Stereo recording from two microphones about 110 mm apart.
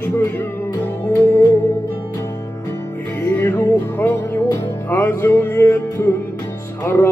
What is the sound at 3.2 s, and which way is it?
Music, 15° left (ahead or behind).